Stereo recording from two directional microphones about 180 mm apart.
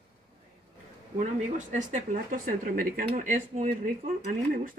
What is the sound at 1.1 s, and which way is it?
Speech, 40° right (ahead or behind).